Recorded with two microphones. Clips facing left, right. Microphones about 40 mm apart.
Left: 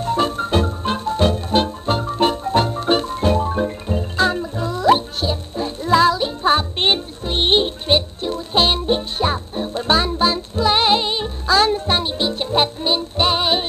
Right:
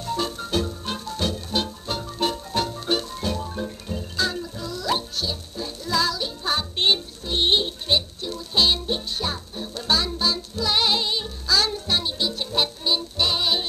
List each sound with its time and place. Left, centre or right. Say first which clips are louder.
0.0 s music: left 8 dB; left